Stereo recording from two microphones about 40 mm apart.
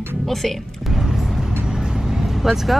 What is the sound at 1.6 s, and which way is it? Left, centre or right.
Vehicle, centre.